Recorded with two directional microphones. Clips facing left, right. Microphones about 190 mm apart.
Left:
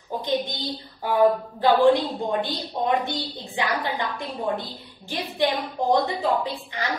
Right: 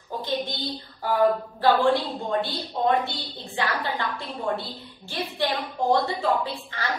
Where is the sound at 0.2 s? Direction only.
15° left (ahead or behind).